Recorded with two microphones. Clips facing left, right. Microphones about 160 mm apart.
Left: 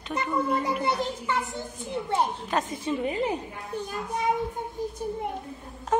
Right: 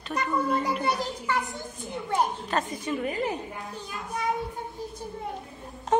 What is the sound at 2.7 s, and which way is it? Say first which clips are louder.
Speech: left 1 dB; 25° left (ahead or behind).